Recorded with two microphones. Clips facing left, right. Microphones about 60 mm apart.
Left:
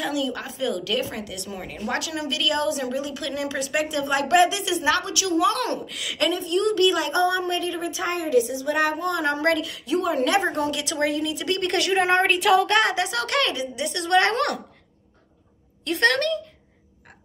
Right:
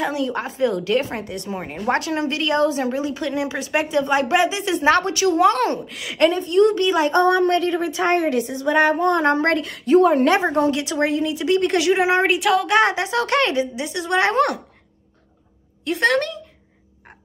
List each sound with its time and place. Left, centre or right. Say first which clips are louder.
0.0 s a woman's voice: right 4 dB; right
10.4 s a woman's voice: right 6 dB; right
11.7 s a woman's voice: right 3 dB; centre
12.8 s a woman's voice: right 4 dB; right
13.8 s a woman's voice: left 2 dB; centre
16.0 s a woman's voice: right 1 dB; centre